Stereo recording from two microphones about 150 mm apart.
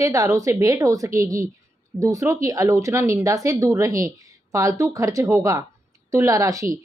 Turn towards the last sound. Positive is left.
turn(degrees=-20)  # may be behind; listen again after turning